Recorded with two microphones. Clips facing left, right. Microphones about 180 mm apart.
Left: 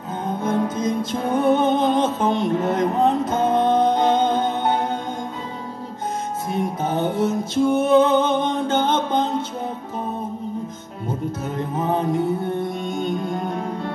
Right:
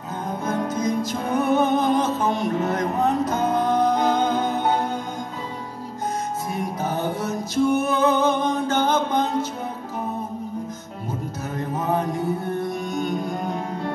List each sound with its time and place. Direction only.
0.4 s music: 25° left (ahead or behind)
6.5 s music: 25° left (ahead or behind)
11.5 s music: 25° left (ahead or behind)